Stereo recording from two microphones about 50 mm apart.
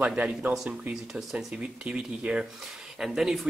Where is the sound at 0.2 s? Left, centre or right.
Right.